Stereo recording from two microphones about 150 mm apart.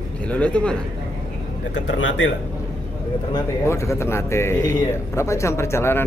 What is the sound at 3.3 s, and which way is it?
A man's voice, 20° left (ahead or behind).